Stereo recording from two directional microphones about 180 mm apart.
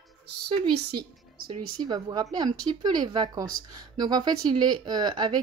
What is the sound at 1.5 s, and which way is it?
A woman's voice, 25° right (ahead or behind).